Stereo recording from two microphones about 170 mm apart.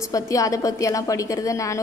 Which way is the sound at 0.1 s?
20° left (ahead or behind).